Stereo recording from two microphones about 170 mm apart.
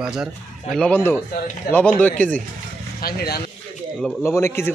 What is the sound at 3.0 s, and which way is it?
Speech, 65° left (ahead or behind).